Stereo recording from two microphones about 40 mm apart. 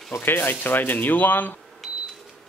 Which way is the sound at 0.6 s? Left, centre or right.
Left.